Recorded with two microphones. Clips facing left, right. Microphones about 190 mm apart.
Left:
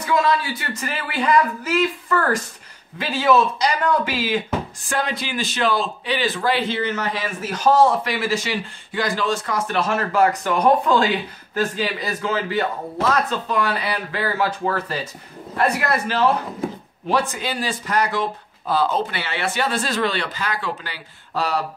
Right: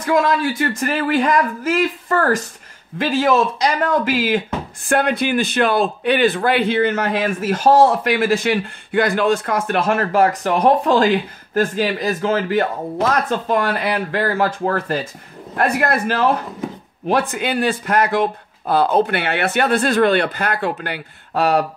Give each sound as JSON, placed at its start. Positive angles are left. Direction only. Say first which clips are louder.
{"t": 0.0, "sound": "a man's voice", "louder": "right 3 dB", "side_deg": -50}